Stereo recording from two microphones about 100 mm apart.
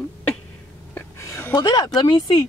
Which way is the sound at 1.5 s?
45° left (ahead or behind).